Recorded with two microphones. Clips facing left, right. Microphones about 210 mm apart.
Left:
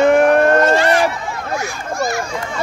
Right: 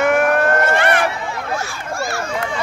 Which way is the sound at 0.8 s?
60° right (ahead or behind).